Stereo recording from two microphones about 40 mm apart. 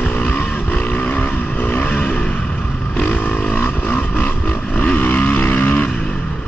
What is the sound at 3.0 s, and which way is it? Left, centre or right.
Vehicle, left.